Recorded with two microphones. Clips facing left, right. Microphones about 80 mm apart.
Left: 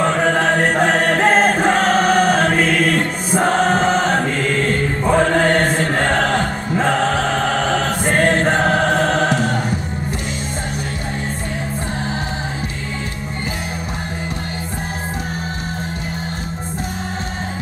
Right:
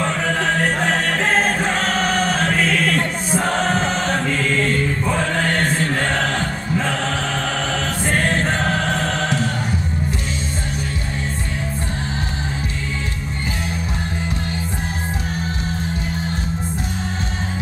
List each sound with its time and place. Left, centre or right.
0.0 s music: left
1.0 s choir: left
3.5 s chant: left
8.1 s choir: left
8.5 s music: left